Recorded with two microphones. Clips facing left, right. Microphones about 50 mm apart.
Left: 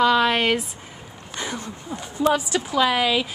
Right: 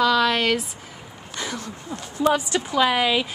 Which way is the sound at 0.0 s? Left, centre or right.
Left.